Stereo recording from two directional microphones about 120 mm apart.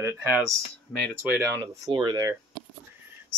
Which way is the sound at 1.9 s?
40° right (ahead or behind).